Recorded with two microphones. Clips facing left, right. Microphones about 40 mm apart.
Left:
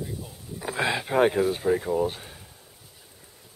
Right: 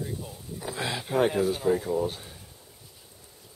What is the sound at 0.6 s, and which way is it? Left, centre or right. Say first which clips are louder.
Speech: left 6 dB; left.